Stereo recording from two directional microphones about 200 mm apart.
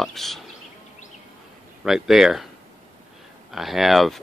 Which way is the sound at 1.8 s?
Centre (ahead or behind).